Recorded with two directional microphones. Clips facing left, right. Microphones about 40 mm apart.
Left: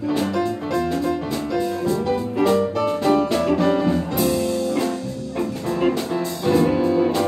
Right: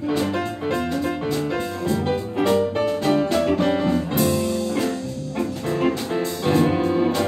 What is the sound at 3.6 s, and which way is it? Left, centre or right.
Music, right.